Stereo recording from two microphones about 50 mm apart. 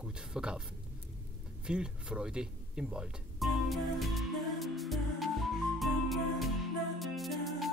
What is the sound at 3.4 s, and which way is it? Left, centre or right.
Music, centre.